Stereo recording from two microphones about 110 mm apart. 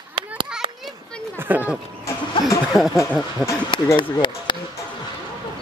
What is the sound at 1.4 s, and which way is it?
Speech, 15° right (ahead or behind).